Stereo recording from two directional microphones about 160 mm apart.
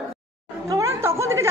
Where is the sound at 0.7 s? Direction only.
20° right (ahead or behind).